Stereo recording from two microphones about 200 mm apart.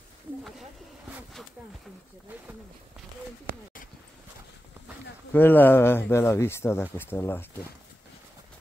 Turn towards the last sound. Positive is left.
turn(degrees=10)  # may be behind; listen again after turning